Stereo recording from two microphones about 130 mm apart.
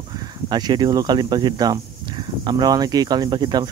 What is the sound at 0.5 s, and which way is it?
Speech, 35° right (ahead or behind).